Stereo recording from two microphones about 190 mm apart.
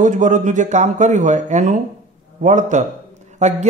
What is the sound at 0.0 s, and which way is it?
A man's voice, 40° right (ahead or behind).